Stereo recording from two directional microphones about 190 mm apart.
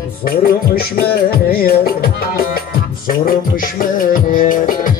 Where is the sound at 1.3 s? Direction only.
55° left (ahead or behind).